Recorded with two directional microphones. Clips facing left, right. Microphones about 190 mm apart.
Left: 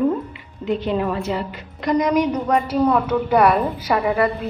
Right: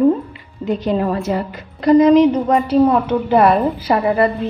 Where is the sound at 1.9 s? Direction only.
25° right (ahead or behind).